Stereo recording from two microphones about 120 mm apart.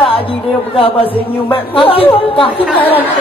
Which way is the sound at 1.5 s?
50° left (ahead or behind).